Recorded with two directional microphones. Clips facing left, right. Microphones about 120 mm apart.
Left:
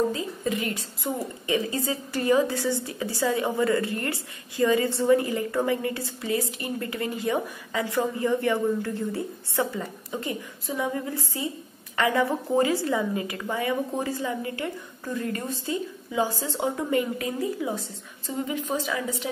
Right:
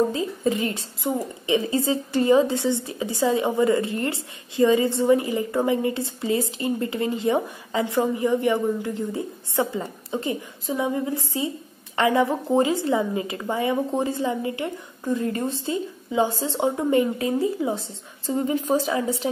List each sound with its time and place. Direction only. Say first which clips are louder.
0.1 s a woman's voice: right 4 dB; 25° right (ahead or behind)
18.3 s speech: right 6 dB; 35° right (ahead or behind)